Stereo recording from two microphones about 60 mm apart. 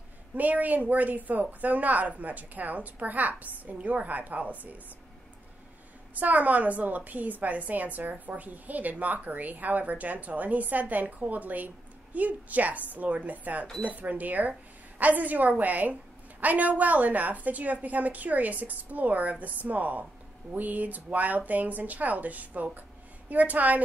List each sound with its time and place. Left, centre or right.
0.4 s a woman's voice: right
6.1 s a woman's voice: right